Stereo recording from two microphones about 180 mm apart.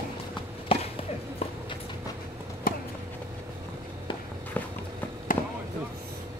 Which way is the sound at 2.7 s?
55° left (ahead or behind).